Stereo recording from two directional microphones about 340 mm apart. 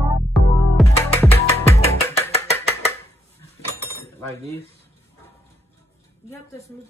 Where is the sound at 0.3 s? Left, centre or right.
Centre.